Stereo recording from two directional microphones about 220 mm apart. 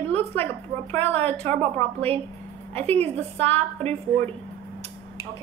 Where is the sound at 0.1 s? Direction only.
10° left (ahead or behind).